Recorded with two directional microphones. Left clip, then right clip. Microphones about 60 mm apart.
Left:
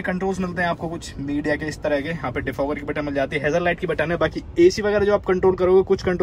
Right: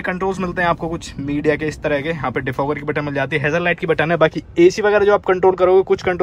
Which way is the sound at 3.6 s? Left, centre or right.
Left.